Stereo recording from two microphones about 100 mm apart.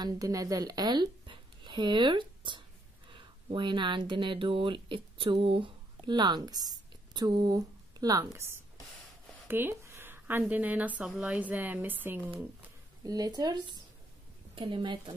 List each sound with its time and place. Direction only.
0.0 s a woman's voice: 40° right (ahead or behind)
9.5 s a sound: 25° right (ahead or behind)
10.5 s speech: 15° right (ahead or behind)
13.0 s speech: 40° right (ahead or behind)
14.5 s a woman's voice: 60° right (ahead or behind)